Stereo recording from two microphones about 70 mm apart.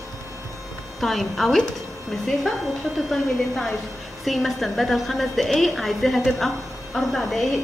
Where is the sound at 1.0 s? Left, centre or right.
Centre.